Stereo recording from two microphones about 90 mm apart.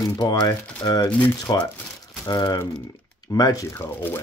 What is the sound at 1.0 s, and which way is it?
Speech, 20° left (ahead or behind).